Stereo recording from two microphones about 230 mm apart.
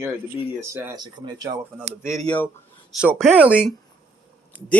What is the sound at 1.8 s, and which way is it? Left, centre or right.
Speech, centre.